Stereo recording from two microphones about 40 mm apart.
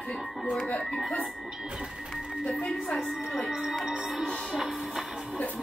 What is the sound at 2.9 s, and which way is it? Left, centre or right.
Speech, centre.